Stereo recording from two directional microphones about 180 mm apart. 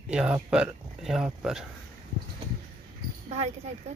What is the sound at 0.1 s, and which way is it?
Speech, 5° right (ahead or behind).